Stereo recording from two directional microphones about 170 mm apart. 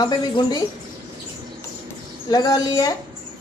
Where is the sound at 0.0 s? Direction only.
25° left (ahead or behind).